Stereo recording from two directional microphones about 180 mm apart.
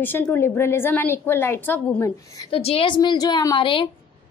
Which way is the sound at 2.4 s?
30° left (ahead or behind).